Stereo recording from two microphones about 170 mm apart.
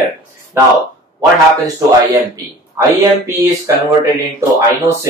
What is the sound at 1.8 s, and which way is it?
Speech, 20° right (ahead or behind).